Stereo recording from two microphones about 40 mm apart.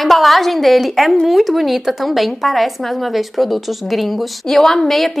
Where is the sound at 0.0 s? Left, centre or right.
Centre.